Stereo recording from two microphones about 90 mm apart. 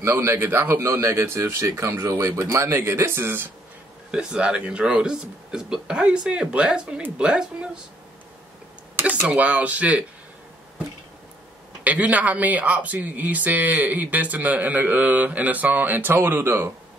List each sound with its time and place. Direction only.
0.0 s speech: 30° right (ahead or behind)
4.1 s speech: 10° right (ahead or behind)
8.9 s speech: 15° right (ahead or behind)
11.8 s speech: 15° right (ahead or behind)